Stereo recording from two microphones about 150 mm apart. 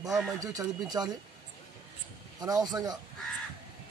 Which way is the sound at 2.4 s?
25° right (ahead or behind).